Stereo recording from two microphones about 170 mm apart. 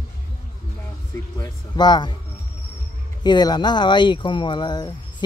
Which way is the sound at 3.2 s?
25° left (ahead or behind).